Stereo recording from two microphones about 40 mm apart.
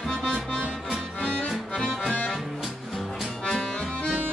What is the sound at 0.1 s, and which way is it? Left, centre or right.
Music, left.